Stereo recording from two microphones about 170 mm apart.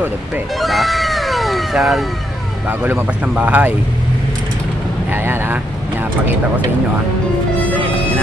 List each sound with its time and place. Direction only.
0.6 s cat: centre (ahead or behind)
2.8 s speech: 10° right (ahead or behind)
5.1 s speech: 15° right (ahead or behind)